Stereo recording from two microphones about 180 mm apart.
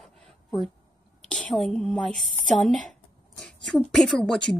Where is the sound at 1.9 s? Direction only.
Centre (ahead or behind).